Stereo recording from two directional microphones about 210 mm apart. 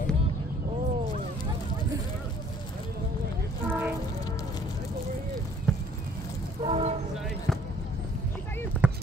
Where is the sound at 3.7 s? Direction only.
10° right (ahead or behind).